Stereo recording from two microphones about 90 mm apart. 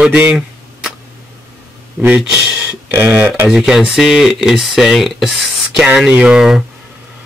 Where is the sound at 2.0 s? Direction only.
20° right (ahead or behind).